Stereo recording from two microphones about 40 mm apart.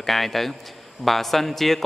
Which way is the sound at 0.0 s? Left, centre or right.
Centre.